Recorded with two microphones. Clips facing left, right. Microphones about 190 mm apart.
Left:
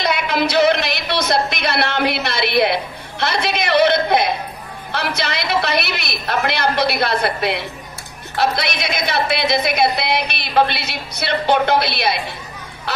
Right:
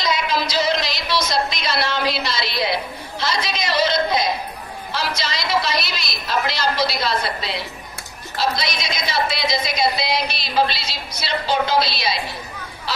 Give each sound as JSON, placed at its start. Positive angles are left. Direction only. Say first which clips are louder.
{"t": 0.0, "sound": "speech", "louder": "left 3 dB", "side_deg": 60}